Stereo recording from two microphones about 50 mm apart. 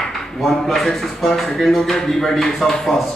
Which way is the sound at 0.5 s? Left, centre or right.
Centre.